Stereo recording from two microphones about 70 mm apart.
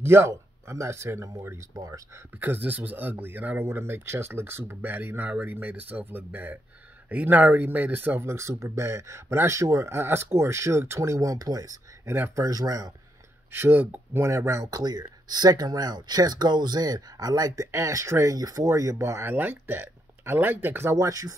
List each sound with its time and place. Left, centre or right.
0.0 s speech: right
1.7 s speech: right
2.4 s speech: right
8.3 s speech: right
13.5 s speech: right
14.2 s speech: right
14.8 s speech: right
17.6 s speech: right
18.7 s speech: right
19.2 s speech: right